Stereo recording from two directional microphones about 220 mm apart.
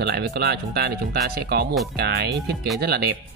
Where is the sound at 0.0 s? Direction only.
50° right (ahead or behind).